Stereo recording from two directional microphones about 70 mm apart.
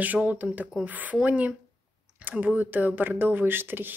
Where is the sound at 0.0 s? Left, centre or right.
Right.